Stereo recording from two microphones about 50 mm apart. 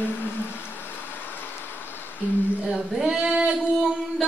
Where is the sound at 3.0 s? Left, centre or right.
Centre.